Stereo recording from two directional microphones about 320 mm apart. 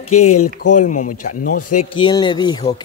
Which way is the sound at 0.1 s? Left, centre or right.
Left.